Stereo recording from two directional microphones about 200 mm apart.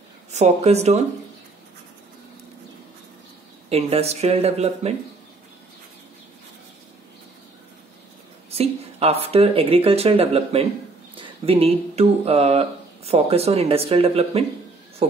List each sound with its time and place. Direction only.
0.3 s speech: 35° right (ahead or behind)
3.7 s speech: 30° right (ahead or behind)
8.5 s speech: 30° right (ahead or behind)